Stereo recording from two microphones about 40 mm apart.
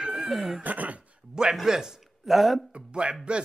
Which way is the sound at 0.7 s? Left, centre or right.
Right.